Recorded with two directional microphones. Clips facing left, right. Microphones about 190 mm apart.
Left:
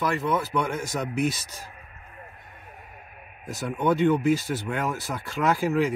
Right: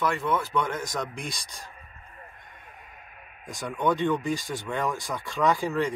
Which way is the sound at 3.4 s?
5° left (ahead or behind).